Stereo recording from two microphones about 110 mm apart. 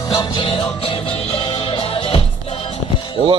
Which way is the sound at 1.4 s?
45° left (ahead or behind).